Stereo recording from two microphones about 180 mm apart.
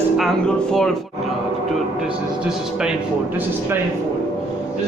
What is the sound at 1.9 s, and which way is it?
Speech, 5° right (ahead or behind).